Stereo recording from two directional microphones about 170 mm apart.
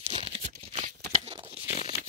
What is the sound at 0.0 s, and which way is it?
Tearing, 35° right (ahead or behind).